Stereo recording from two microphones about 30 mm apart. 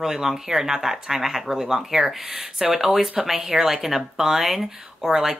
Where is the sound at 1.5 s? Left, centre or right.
Right.